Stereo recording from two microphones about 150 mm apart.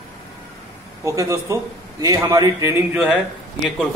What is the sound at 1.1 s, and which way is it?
Speech, 20° right (ahead or behind).